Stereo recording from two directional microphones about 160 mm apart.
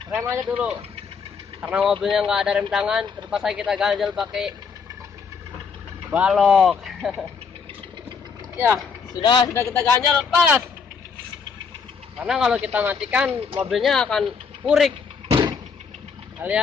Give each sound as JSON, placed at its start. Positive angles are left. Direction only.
{"t": 0.1, "sound": "speech", "side_deg": -10}
{"t": 6.1, "sound": "speech", "side_deg": 0}
{"t": 9.1, "sound": "a man's voice", "side_deg": 30}
{"t": 9.5, "sound": "speech", "side_deg": 15}
{"t": 12.2, "sound": "speech", "side_deg": -5}
{"t": 15.2, "sound": "vehicle", "side_deg": -30}
{"t": 16.3, "sound": "speech", "side_deg": -10}